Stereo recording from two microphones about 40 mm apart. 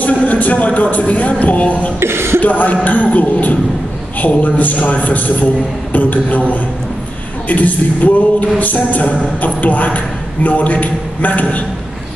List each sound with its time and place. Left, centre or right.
0.0 s a man's voice: left
2.0 s speech: right
2.4 s a man's voice: left
5.9 s a sound: left
7.4 s a sound: left
9.4 s a man's voice: left